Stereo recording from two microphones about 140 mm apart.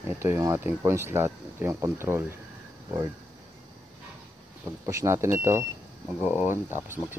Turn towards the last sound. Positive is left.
turn(degrees=-15)  # may be behind; listen again after turning